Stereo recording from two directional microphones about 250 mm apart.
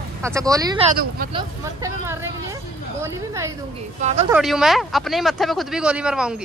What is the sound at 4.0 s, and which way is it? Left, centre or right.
Speech, right.